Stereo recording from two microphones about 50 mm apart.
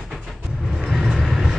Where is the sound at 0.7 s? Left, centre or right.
Centre.